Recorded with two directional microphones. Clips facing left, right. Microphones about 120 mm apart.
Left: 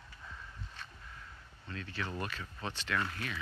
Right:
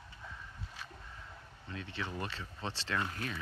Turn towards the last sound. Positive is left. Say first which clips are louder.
# even
turn(degrees=-30)  # may be behind; listen again after turning